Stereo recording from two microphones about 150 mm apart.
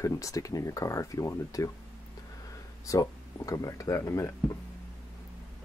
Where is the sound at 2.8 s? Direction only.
20° left (ahead or behind).